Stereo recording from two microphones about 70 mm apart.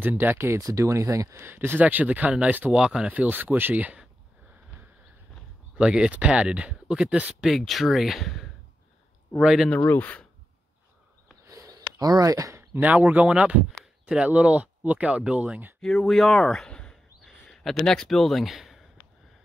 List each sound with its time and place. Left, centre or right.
0.0 s speech: right
0.6 s speech: right
1.4 s speech: right
2.7 s speech: centre
3.1 s speech: right
5.8 s speech: centre
7.4 s speech: centre
9.8 s speech: left
11.4 s a sound: right
12.8 s speech: right
15.8 s speech: centre
17.2 s a sound: centre
17.8 s speech: centre